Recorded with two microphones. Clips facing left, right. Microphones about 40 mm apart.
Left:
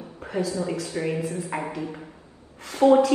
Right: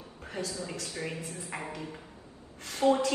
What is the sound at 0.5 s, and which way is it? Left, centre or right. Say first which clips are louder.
Speech: left 10 dB; left.